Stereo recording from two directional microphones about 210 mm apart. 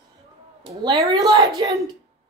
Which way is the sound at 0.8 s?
15° right (ahead or behind).